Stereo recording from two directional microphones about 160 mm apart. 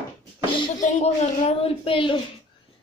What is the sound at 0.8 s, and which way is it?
A child's voice, 45° left (ahead or behind).